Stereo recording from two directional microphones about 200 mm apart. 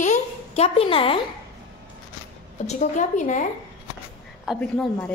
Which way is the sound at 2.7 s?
35° left (ahead or behind).